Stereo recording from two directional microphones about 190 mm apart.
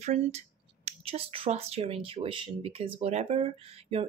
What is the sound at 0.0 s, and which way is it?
Speech, 35° right (ahead or behind).